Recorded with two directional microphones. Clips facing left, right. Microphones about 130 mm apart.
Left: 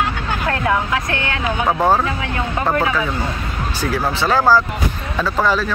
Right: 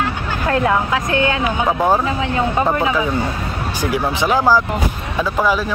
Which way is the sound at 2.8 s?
20° right (ahead or behind).